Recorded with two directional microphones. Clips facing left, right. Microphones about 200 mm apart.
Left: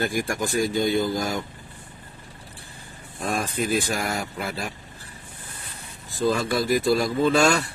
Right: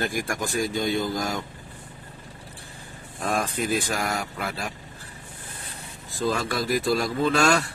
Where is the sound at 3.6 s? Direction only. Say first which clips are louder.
Left 1 dB; centre (ahead or behind).